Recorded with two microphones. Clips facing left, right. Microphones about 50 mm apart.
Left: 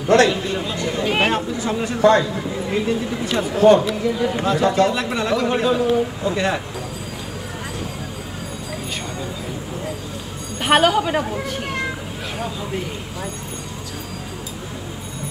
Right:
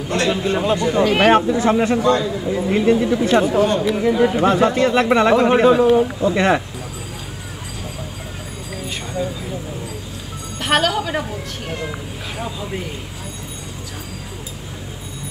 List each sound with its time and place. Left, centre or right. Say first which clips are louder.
0.3 s speech: right 5 dB; right
1.2 s speech: right 7 dB; right
2.0 s a man's voice: left 2 dB; left
2.7 s speech: right 6 dB; right
10.6 s a woman's voice: left 3 dB; centre